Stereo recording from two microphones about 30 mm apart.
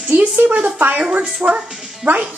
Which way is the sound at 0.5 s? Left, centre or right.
Right.